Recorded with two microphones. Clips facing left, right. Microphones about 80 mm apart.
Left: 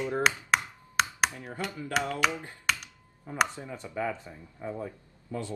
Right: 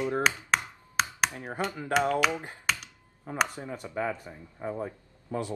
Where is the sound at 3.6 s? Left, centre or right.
Centre.